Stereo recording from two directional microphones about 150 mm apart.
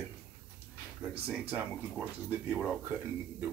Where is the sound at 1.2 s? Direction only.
10° right (ahead or behind).